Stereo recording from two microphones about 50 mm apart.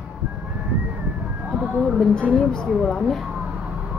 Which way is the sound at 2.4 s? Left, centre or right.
Centre.